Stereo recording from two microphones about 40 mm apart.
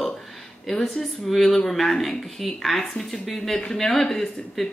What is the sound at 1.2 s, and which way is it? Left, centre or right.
Speech, centre.